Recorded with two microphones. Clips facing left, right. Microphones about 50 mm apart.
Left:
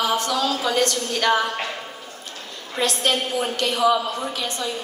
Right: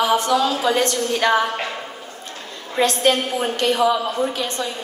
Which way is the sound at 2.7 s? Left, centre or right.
Right.